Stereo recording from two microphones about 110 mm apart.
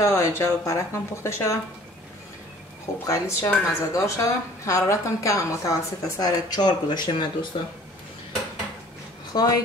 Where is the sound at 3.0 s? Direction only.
25° left (ahead or behind).